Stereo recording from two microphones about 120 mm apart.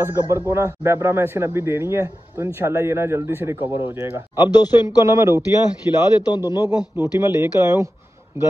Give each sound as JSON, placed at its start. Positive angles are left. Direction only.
{"t": 0.0, "sound": "speech", "side_deg": -20}
{"t": 5.9, "sound": "a man's voice", "side_deg": 40}
{"t": 7.0, "sound": "speech", "side_deg": -20}